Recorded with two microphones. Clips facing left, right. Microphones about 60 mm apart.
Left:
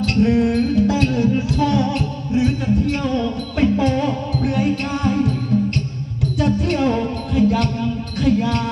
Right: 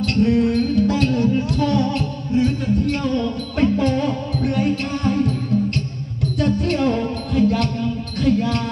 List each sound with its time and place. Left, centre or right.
0.2 s music: left
6.4 s music: centre